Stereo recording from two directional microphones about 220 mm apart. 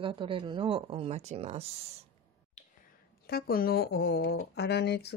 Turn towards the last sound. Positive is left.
turn(degrees=50)  # may be behind; listen again after turning